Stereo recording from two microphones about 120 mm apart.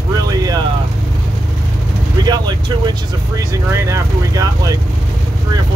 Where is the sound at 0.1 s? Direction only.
30° right (ahead or behind).